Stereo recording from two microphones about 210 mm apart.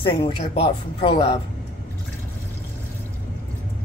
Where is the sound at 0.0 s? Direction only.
25° left (ahead or behind).